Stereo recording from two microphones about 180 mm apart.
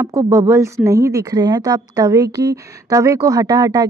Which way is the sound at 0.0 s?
15° right (ahead or behind).